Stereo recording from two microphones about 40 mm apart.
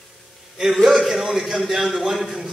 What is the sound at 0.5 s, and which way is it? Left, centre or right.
A man's voice, centre.